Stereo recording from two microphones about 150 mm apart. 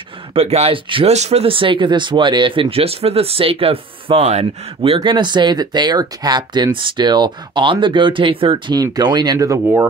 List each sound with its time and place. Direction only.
0.3 s speech: 40° right (ahead or behind); by 9.6 s 25° right (ahead or behind)